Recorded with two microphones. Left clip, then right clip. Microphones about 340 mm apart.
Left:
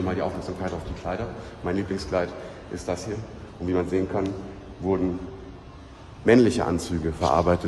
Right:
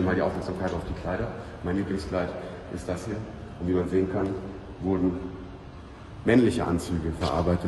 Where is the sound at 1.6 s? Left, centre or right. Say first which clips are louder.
Left 2 dB; centre.